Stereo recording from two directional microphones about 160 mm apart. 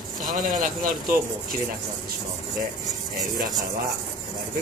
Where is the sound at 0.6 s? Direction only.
60° right (ahead or behind).